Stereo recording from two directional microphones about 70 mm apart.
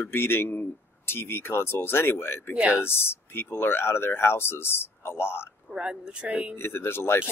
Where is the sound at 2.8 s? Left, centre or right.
Left.